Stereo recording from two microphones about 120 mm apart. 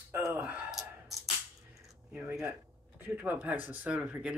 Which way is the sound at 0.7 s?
Centre (ahead or behind).